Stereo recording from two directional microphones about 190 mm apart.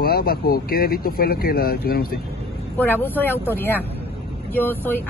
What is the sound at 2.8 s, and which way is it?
Speech, 10° left (ahead or behind).